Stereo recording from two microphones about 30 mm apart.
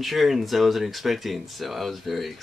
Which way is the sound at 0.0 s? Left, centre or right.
Centre.